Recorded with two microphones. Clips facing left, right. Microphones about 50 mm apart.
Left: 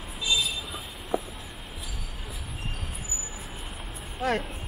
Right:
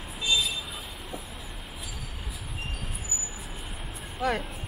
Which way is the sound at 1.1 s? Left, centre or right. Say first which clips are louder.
Left 12 dB; left.